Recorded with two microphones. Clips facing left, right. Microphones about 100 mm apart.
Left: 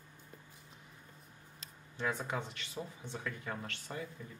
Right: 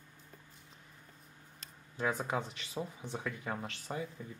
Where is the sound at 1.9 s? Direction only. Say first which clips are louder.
Right 3 dB; 15° right (ahead or behind).